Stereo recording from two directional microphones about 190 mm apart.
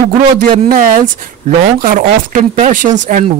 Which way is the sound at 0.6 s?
45° right (ahead or behind).